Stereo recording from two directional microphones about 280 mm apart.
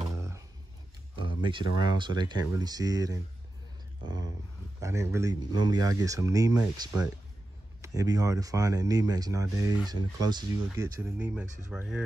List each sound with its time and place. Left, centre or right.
0.1 s a sound: centre
2.0 s speech: centre
4.7 s speech: centre